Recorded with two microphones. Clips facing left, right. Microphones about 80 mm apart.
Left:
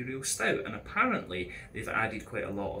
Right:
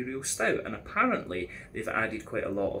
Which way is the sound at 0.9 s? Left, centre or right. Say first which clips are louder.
Right 2 dB; centre.